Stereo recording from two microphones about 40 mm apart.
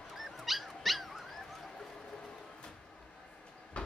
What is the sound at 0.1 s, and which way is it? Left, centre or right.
Dog, centre.